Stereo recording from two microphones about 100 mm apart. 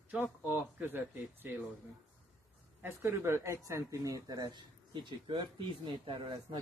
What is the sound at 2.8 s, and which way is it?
Speech, 25° right (ahead or behind).